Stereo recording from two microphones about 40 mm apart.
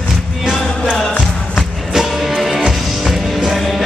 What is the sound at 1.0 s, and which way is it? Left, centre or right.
Music, centre.